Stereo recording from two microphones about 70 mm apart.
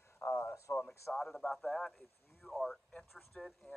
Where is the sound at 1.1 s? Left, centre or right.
Centre.